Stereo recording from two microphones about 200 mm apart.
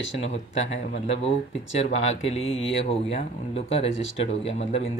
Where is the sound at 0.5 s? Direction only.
70° left (ahead or behind).